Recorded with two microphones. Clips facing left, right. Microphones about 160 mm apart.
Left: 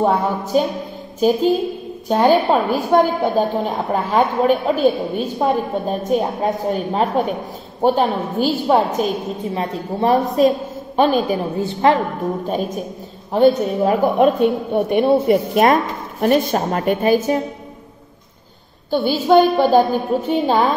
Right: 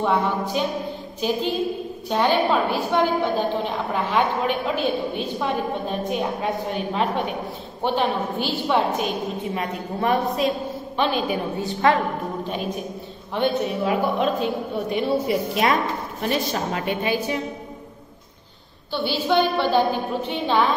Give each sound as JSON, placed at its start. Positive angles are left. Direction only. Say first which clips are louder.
{"t": 0.0, "sound": "a woman's voice", "louder": "left 4 dB", "side_deg": 40}
{"t": 12.4, "sound": "a woman's voice", "louder": "left 5 dB", "side_deg": 45}
{"t": 14.1, "sound": "a woman's voice", "louder": "left 8 dB", "side_deg": 60}
{"t": 18.9, "sound": "a woman's voice", "louder": "left 7 dB", "side_deg": 45}